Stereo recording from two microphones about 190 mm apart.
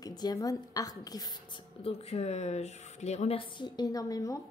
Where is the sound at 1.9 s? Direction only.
30° left (ahead or behind); by 4.4 s 15° left (ahead or behind).